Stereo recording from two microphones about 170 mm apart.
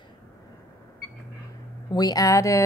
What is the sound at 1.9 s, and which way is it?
Speech, 25° left (ahead or behind).